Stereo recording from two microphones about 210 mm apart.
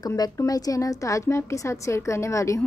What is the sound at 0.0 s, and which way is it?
A woman's voice, 15° left (ahead or behind).